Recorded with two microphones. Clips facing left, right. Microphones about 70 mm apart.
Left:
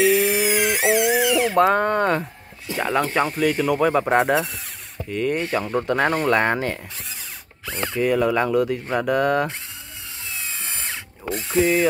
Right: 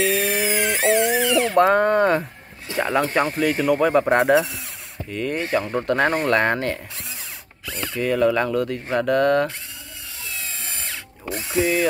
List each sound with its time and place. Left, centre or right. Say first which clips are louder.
0.0 s chainsaw: left 3 dB; centre
2.7 s speech: right 1 dB; centre
7.6 s speech: left 3 dB; left
8.0 s speech: even; centre
10.3 s tools: left 1 dB; left
11.3 s speech: left 2 dB; centre